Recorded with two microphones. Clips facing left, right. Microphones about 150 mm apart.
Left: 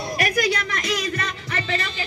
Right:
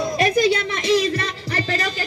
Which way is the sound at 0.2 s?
25° right (ahead or behind).